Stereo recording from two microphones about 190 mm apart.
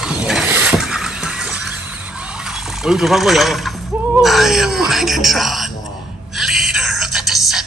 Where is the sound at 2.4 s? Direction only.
5° right (ahead or behind).